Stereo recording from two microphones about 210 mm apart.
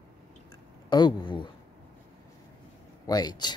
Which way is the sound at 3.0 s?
20° left (ahead or behind).